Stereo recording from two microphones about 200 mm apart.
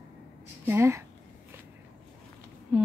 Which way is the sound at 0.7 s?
15° right (ahead or behind).